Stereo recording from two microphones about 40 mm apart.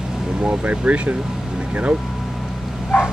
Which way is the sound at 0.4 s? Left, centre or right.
Right.